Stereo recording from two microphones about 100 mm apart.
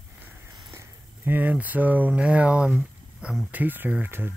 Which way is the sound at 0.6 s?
35° right (ahead or behind).